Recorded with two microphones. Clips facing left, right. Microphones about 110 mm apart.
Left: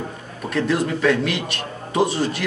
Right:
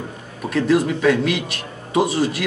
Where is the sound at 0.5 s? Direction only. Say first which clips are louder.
Right 3 dB; 5° right (ahead or behind).